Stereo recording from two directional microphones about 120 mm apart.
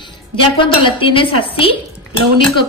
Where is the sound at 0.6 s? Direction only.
45° left (ahead or behind).